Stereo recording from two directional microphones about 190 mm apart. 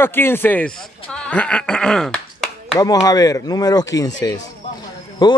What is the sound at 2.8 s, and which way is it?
Speech, 20° left (ahead or behind).